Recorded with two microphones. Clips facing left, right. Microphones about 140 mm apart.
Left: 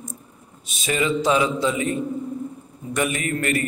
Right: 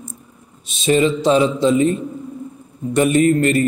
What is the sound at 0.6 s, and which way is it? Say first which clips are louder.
Speech: right 8 dB; 25° right (ahead or behind).